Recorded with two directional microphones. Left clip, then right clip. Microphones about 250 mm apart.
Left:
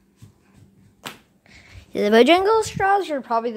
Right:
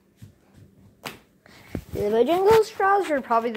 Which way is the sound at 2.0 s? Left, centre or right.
Left.